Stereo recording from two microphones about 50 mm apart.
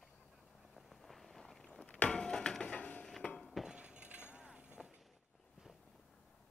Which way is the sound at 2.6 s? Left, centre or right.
Left.